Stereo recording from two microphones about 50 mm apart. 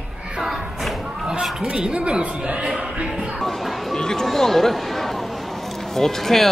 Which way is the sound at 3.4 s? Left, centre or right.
Centre.